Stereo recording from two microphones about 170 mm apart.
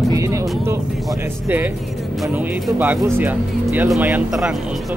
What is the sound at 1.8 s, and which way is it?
Speech, centre (ahead or behind).